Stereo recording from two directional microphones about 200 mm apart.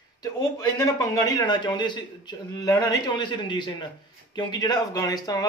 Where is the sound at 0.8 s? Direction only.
15° left (ahead or behind).